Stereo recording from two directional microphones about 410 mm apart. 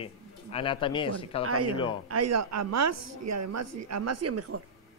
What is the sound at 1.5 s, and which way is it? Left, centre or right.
Speech, right.